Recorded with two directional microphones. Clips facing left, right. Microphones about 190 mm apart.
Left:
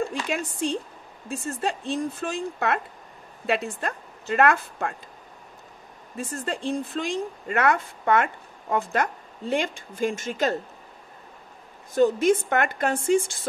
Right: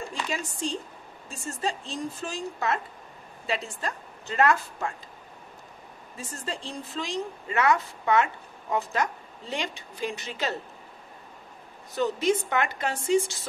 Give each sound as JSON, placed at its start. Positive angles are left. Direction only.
{"t": 0.1, "sound": "a woman's voice", "side_deg": 60}
{"t": 6.1, "sound": "a woman's voice", "side_deg": 55}
{"t": 11.9, "sound": "a woman's voice", "side_deg": 50}